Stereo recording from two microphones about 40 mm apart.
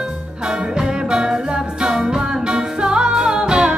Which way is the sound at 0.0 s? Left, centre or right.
Right.